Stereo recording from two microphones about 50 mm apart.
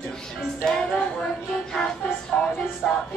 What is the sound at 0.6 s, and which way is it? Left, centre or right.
Music, centre.